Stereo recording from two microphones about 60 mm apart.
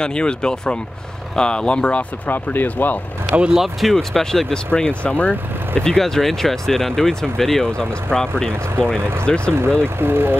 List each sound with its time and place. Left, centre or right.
0.0 s speech: centre
2.4 s speech: left
3.4 s speech: centre
4.7 s speech: centre
5.8 s speech: centre
9.6 s speech: right